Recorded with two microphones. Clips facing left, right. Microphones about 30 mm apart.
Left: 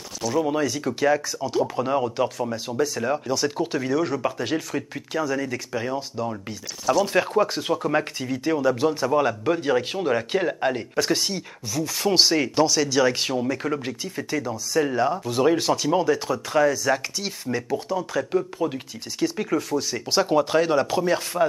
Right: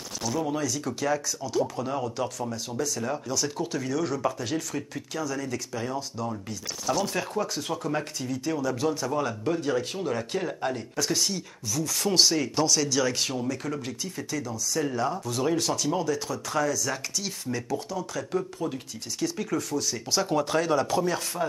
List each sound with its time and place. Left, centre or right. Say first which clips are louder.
0.3 s speech: left 6 dB; left
12.6 s speech: left 5 dB; centre